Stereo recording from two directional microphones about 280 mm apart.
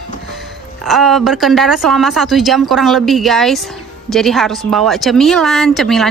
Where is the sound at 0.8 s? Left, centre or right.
Centre.